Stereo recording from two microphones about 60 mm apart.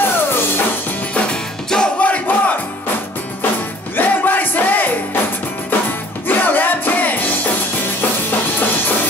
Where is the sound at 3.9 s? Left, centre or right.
Left.